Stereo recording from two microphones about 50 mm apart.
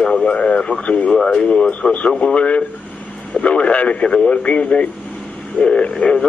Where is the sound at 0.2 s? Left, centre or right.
Left.